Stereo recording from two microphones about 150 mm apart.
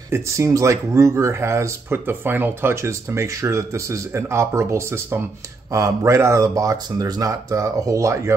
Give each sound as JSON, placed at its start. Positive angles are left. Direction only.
{"t": 0.1, "sound": "speech", "side_deg": -20}